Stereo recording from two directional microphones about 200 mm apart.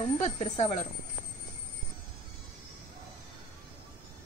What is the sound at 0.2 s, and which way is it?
Speech, 30° left (ahead or behind).